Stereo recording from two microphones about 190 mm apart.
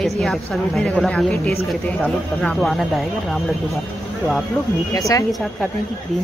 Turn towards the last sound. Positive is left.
turn(degrees=15)  # may be behind; listen again after turning